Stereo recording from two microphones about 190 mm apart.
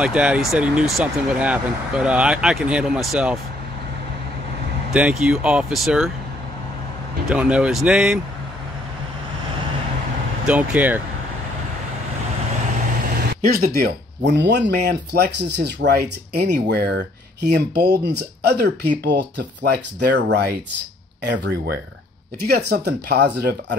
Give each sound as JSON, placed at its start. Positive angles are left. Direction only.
{"t": 0.0, "sound": "speech", "side_deg": -5}
{"t": 4.9, "sound": "speech", "side_deg": -5}
{"t": 7.2, "sound": "speech", "side_deg": -5}
{"t": 10.4, "sound": "speech", "side_deg": -5}
{"t": 13.3, "sound": "a sound", "side_deg": -50}
{"t": 13.7, "sound": "speech", "side_deg": -60}